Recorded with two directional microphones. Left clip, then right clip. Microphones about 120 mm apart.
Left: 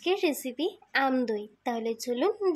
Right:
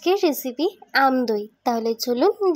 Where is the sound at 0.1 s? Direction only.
40° right (ahead or behind).